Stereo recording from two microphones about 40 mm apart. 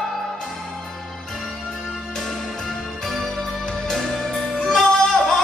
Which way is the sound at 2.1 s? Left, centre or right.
Centre.